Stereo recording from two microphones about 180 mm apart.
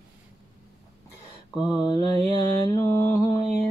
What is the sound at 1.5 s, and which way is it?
Mantra, 5° right (ahead or behind).